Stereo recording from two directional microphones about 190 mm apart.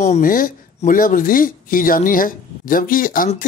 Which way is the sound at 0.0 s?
40° left (ahead or behind).